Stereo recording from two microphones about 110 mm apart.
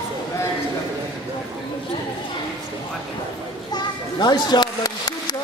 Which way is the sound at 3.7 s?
40° left (ahead or behind).